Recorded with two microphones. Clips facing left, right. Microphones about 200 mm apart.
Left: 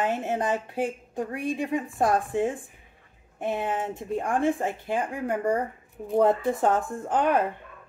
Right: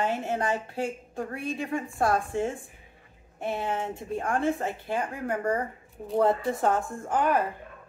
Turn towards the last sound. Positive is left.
turn(degrees=20)  # may be behind; listen again after turning